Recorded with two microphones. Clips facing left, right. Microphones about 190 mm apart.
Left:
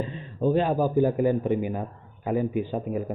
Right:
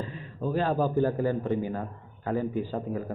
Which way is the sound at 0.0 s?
25° left (ahead or behind).